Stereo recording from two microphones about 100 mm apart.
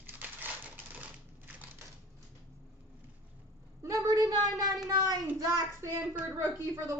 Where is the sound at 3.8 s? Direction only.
35° right (ahead or behind).